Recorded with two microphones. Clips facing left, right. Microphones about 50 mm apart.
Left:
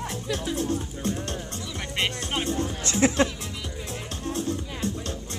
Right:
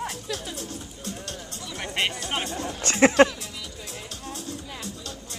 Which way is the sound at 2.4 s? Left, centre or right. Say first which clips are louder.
Left 4 dB; right.